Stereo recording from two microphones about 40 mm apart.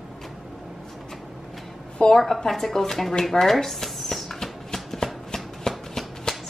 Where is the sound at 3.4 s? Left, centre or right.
Centre.